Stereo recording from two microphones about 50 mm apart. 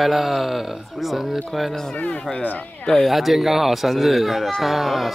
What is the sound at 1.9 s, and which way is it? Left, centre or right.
Speech, left.